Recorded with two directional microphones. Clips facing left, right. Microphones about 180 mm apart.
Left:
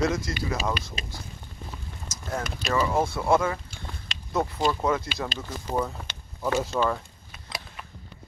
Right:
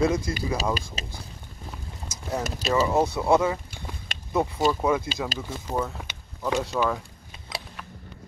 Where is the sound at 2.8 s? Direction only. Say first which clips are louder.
Right 2 dB; 20° right (ahead or behind).